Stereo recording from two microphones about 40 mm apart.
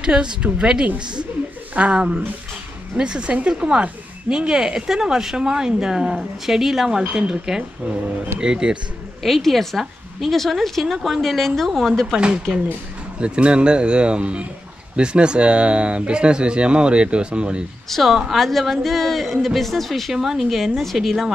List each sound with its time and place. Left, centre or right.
0.0 s speech: right
9.2 s a man's voice: centre
13.2 s speech: right
17.8 s a woman's voice: centre
18.1 s a man's voice: centre